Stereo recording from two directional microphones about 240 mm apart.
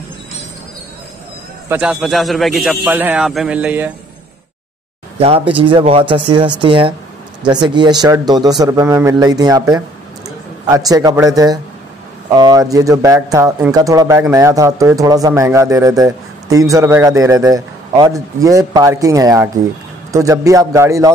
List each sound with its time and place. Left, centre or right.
1.7 s a man's voice: centre
5.2 s speech: right